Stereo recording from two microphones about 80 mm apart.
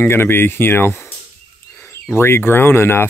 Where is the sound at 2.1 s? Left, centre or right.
Left.